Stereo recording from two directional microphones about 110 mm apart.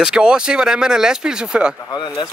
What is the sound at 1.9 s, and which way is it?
Speech, 40° left (ahead or behind).